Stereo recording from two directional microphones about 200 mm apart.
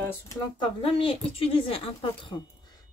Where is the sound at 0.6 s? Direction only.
25° left (ahead or behind).